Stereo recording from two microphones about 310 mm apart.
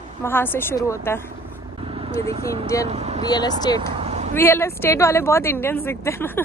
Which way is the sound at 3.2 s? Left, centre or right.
Centre.